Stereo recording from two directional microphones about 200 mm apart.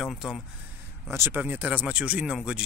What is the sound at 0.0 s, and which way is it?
Speech, centre (ahead or behind).